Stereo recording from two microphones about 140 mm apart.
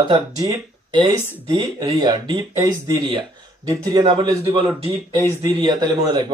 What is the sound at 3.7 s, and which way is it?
A man's voice, 30° right (ahead or behind).